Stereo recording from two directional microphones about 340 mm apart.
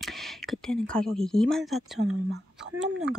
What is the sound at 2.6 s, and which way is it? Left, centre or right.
Speech, centre.